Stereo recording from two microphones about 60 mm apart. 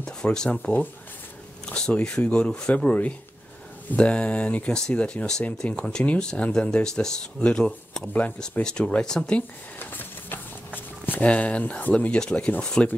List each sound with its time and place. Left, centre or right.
0.0 s speech: centre
1.7 s speech: centre
9.8 s printer: left
11.1 s speech: left